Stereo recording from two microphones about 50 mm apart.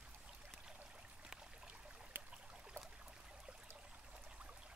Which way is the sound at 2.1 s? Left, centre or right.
Right.